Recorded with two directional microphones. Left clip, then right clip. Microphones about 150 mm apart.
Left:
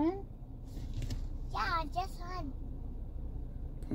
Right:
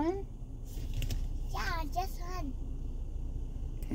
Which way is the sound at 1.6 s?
10° right (ahead or behind).